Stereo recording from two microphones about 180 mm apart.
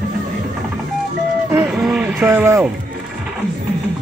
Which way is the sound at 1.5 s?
5° right (ahead or behind).